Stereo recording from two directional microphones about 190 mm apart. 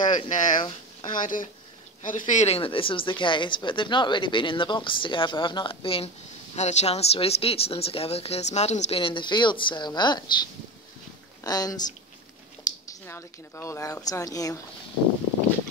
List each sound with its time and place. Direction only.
0.0 s speech: 25° left (ahead or behind)
1.0 s speech: 45° left (ahead or behind); by 10.3 s 25° left (ahead or behind)
11.4 s speech: 20° left (ahead or behind)